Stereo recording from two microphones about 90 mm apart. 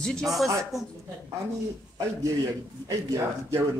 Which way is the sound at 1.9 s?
40° right (ahead or behind).